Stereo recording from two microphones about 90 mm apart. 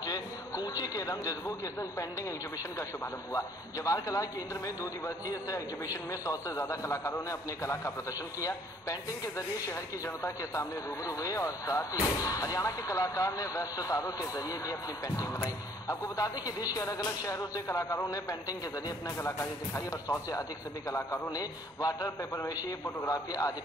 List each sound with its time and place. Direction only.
0.0 s a sound: 45° left (ahead or behind)
3.3 s speech: 40° left (ahead or behind)
19.2 s speech: 30° left (ahead or behind)
21.3 s a man's voice: 45° left (ahead or behind)